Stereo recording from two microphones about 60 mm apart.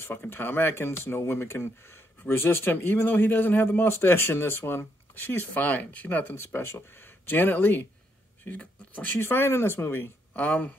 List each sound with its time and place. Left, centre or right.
0.0 s speech: left
6.4 s speech: left
9.2 s speech: left
10.3 s speech: left